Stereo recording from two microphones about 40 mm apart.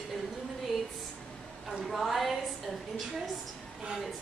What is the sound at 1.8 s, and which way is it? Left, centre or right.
Speech, centre.